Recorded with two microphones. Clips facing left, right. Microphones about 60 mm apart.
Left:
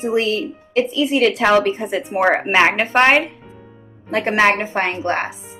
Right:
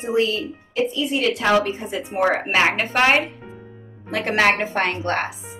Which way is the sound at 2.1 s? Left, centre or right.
Left.